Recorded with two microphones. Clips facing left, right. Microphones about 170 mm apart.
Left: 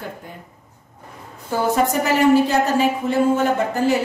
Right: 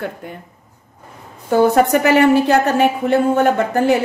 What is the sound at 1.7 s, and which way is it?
A woman's voice, 65° right (ahead or behind).